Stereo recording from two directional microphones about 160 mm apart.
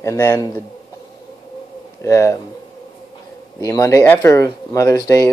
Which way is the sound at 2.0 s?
20° left (ahead or behind).